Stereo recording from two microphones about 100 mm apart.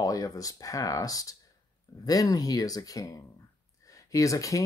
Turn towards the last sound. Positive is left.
turn(degrees=35)  # may be behind; listen again after turning